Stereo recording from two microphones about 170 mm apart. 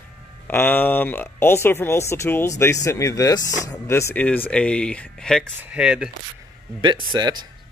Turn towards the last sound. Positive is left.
turn(degrees=-25)  # may be behind; listen again after turning